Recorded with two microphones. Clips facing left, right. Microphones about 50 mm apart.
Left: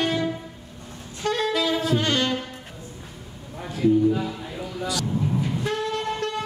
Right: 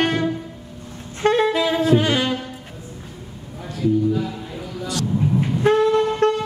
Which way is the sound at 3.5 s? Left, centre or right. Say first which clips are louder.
Even; centre.